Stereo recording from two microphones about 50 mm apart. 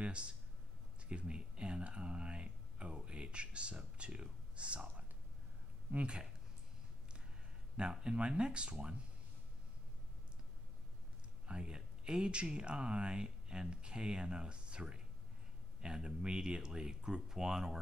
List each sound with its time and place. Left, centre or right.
0.0 s speech: right
1.0 s a sound: right
6.0 s speech: centre
7.7 s speech: centre
11.4 s speech: centre